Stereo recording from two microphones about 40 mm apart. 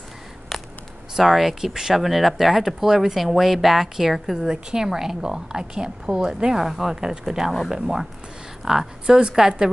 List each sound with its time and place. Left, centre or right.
0.5 s a sound: centre
1.1 s a woman's voice: centre
2.0 s a woman's voice: centre